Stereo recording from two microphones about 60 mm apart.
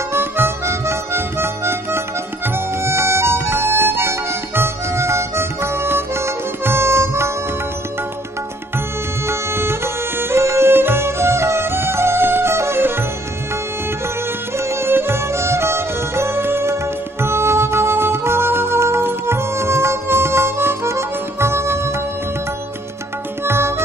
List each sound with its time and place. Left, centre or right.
0.1 s music: right
9.3 s music: right
14.6 s music: right
23.4 s music: right